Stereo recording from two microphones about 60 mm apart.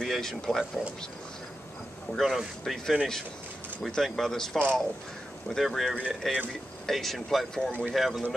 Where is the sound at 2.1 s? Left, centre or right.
Centre.